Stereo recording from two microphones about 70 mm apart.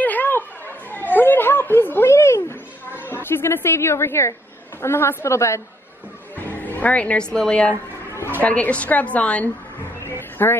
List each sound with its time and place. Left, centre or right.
0.0 s chatter: left
2.1 s a sound: left
3.0 s a man's voice: left
6.3 s a woman's voice: left
10.4 s a woman's voice: left